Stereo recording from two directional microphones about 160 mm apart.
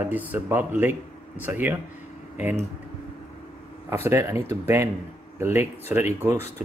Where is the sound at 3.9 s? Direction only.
15° right (ahead or behind).